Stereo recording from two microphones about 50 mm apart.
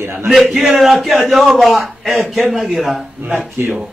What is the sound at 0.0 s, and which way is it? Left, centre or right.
Speech, right.